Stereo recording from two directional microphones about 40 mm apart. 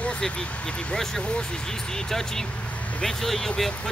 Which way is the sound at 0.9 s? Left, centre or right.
Centre.